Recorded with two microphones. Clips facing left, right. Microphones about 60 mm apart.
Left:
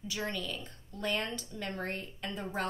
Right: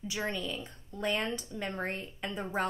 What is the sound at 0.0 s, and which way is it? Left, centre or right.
A woman's voice, centre.